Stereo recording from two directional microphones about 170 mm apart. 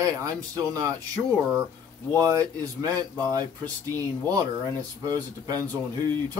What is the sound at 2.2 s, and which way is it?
Speech, 20° right (ahead or behind).